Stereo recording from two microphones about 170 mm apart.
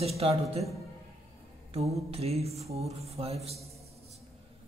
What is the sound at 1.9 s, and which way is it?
Speech, 35° right (ahead or behind).